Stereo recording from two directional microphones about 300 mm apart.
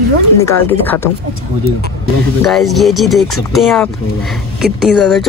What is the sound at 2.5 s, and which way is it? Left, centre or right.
Speech, centre.